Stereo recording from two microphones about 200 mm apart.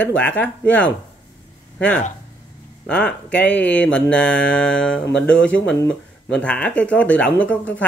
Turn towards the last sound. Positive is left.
turn(degrees=5)  # may be behind; listen again after turning